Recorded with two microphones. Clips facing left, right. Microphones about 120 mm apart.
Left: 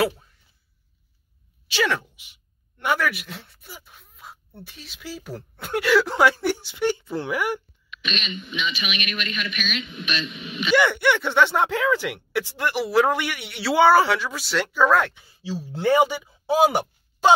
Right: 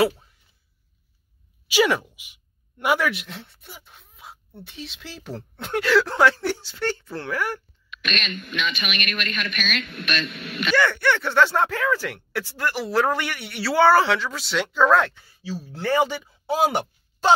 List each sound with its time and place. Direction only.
1.7 s speech: 10° right (ahead or behind)
3.0 s speech: 5° left (ahead or behind)
8.7 s speech: 50° right (ahead or behind)
10.7 s speech: 15° left (ahead or behind)
15.2 s speech: 20° left (ahead or behind)